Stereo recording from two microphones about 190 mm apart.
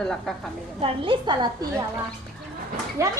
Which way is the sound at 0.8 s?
25° right (ahead or behind).